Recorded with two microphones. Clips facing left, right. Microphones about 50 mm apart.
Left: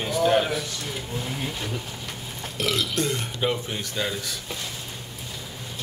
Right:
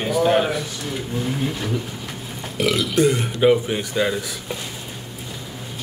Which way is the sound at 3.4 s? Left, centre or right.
Centre.